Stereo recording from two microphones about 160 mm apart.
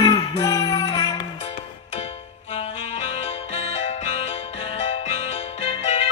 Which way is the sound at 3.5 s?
40° left (ahead or behind).